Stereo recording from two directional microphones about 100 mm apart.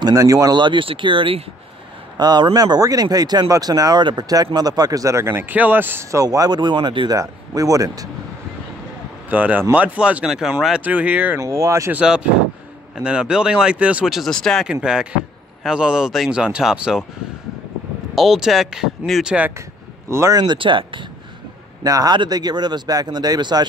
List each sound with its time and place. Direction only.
0.0 s speech: 35° right (ahead or behind); by 1.4 s 60° right (ahead or behind)
2.1 s a man's voice: 45° right (ahead or behind); by 6.0 s 20° right (ahead or behind)
6.1 s speech: 35° right (ahead or behind)
7.2 s speech: 35° right (ahead or behind)
9.3 s speech: 15° right (ahead or behind)
11.3 s speech: 30° right (ahead or behind)
11.9 s speech: 10° right (ahead or behind)
14.7 s speech: 10° right (ahead or behind)
18.1 s speech: 5° right (ahead or behind)
20.1 s speech: 30° right (ahead or behind)
20.3 s speech: 55° right (ahead or behind)
21.8 s speech: 40° right (ahead or behind)